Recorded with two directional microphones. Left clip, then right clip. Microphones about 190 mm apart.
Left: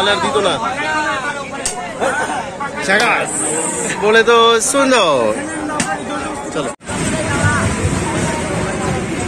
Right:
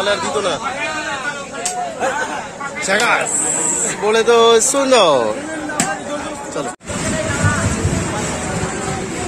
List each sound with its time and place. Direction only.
0.0 s speech: 5° right (ahead or behind)
2.9 s speech: 10° right (ahead or behind)